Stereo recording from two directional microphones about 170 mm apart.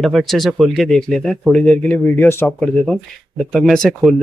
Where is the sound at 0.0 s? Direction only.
Centre (ahead or behind).